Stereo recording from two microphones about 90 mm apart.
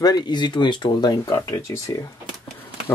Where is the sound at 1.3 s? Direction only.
35° left (ahead or behind).